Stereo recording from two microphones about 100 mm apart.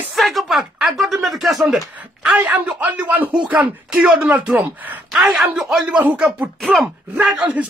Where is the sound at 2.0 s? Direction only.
15° right (ahead or behind).